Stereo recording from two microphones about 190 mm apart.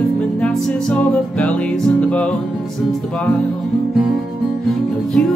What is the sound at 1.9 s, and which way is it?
Music, 5° left (ahead or behind).